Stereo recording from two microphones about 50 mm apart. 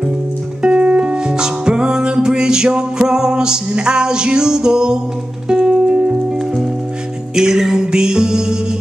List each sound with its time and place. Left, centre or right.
0.6 s music: right